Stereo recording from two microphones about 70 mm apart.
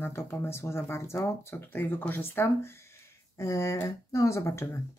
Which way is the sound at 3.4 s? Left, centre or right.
Left.